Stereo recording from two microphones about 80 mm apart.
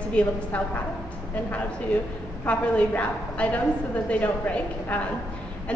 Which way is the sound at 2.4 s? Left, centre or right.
Centre.